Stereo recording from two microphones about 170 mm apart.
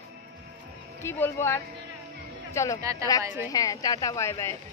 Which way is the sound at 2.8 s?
20° right (ahead or behind).